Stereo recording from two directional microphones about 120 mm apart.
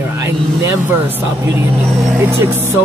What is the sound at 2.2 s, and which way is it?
Speech, 20° right (ahead or behind).